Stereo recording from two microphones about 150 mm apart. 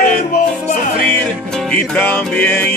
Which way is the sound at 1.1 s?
5° left (ahead or behind).